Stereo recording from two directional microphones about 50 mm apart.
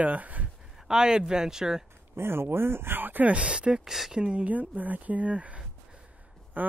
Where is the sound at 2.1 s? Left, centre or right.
Right; by 3.8 s centre.